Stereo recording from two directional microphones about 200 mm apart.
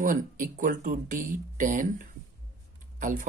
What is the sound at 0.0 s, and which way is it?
Speech, 40° right (ahead or behind).